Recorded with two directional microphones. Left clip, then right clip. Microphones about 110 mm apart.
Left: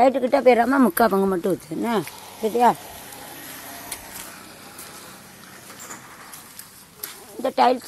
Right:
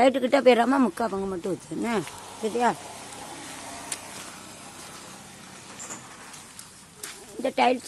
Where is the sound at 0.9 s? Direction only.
85° left.